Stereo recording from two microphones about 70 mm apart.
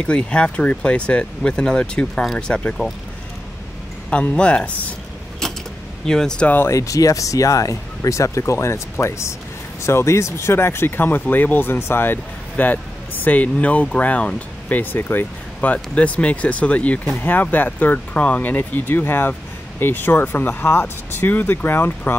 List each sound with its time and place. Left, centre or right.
0.0 s speech: centre
4.1 s speech: centre
5.4 s creak: centre
6.0 s speech: centre
6.7 s speech: left; by 17.2 s centre
17.2 s speech: left